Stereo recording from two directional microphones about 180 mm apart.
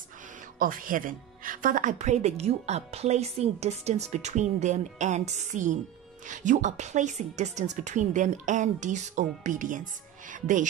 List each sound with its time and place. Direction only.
0.6 s a woman's voice: 50° right (ahead or behind)